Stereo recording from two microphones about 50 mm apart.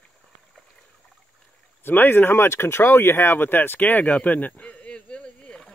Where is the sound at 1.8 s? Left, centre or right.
Left.